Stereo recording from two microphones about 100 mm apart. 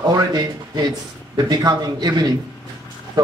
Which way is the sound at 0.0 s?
40° right (ahead or behind).